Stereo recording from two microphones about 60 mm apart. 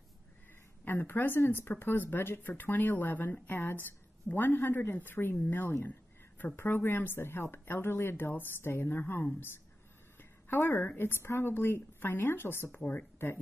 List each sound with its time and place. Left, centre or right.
0.8 s a woman's voice: left
11.0 s speech: left
12.7 s speech: left